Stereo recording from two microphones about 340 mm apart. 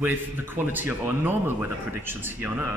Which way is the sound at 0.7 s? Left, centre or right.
Centre.